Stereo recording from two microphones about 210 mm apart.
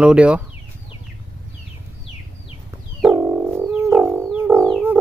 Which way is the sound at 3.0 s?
10° right (ahead or behind).